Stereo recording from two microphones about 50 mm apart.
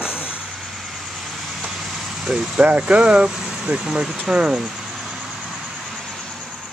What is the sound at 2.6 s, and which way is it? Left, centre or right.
Speech, right.